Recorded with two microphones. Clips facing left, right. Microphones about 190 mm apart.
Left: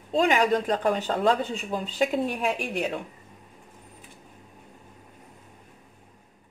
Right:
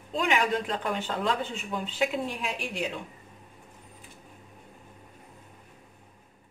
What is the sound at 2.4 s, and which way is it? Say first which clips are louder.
Speech: left 5 dB; 55° left (ahead or behind).